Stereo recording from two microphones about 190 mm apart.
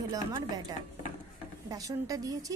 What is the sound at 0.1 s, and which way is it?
A woman's voice, 20° right (ahead or behind).